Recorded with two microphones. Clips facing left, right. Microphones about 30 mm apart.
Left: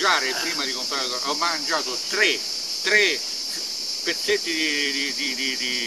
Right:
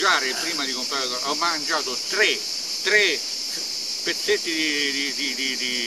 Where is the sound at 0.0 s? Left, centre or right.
Centre.